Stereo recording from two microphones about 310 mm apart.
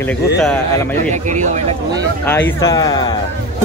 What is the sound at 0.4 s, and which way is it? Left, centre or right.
Speech, centre.